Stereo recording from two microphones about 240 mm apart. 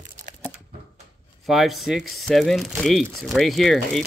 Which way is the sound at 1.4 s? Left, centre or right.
Centre.